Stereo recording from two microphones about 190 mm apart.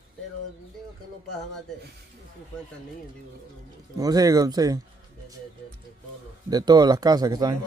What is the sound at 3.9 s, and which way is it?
Speech, 20° right (ahead or behind).